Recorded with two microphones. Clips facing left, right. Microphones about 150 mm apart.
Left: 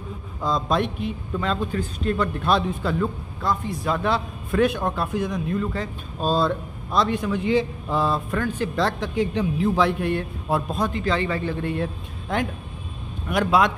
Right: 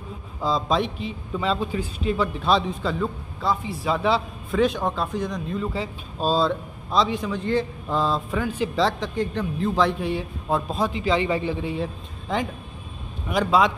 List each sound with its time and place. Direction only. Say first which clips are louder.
0.4 s a man's voice: even; 5° right (ahead or behind)
0.8 s a man's voice: left 3 dB; 55° left (ahead or behind)
1.3 s a man's voice: right 2 dB; 5° right (ahead or behind)
5.6 s a man's voice: left 1 dB; 10° right (ahead or behind)
8.4 s speech: even; 10° right (ahead or behind)
9.3 s a man's voice: left 3 dB; 10° left (ahead or behind)
11.1 s speech: right 2 dB; 10° right (ahead or behind)
11.7 s a man's voice: left 1 dB; centre (ahead or behind)